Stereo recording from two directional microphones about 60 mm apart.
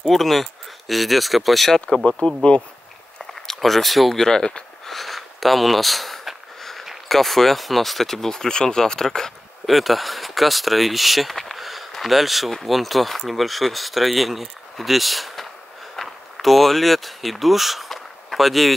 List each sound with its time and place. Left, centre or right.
0.0 s speech: centre
2.0 s speech: centre
3.4 s speech: centre
4.8 s speech: centre